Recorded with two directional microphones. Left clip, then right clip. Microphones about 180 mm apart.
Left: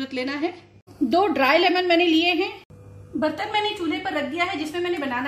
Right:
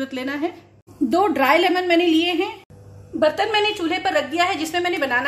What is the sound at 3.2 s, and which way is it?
A woman's voice, 50° right (ahead or behind).